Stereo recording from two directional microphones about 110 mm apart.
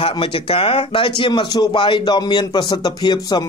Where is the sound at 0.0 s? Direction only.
50° left (ahead or behind).